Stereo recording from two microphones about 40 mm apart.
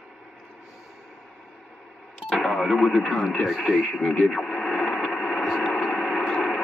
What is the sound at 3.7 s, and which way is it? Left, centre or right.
Speech, centre.